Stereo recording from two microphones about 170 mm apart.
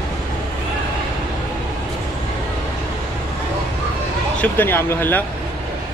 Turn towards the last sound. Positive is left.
turn(degrees=15)  # may be behind; listen again after turning